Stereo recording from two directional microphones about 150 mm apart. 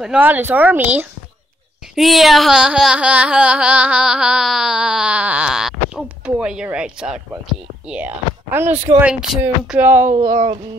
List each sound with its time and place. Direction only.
0.0 s speech: 10° right (ahead or behind)
2.0 s carnatic music: centre (ahead or behind)
7.9 s speech: 10° right (ahead or behind)
9.0 s carnatic music: 5° right (ahead or behind)
9.7 s speech: 15° right (ahead or behind)
10.2 s a sound: 60° right (ahead or behind)